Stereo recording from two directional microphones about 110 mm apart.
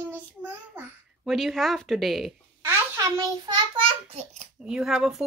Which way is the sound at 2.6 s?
25° right (ahead or behind).